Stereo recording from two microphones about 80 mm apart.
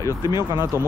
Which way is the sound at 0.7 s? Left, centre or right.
Right.